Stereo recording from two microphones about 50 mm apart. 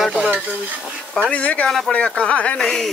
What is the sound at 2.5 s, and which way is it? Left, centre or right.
Speech, centre.